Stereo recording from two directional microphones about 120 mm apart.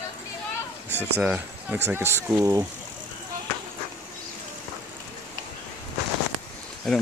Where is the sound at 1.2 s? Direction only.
15° right (ahead or behind); by 2.7 s 30° right (ahead or behind).